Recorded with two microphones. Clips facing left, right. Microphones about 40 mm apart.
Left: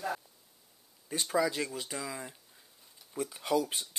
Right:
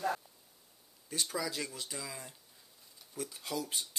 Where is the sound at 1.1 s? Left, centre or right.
Centre.